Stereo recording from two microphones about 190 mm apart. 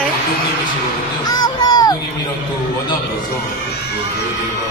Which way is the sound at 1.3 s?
20° left (ahead or behind).